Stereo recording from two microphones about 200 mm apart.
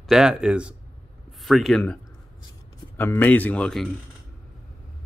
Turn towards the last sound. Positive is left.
turn(degrees=5)  # may be behind; listen again after turning